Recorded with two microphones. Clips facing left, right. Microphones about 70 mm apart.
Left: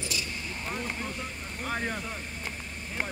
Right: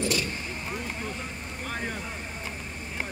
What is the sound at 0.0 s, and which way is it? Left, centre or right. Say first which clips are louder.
Vehicle: right 7 dB; right.